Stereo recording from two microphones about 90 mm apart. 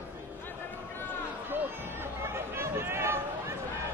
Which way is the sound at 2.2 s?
30° right (ahead or behind).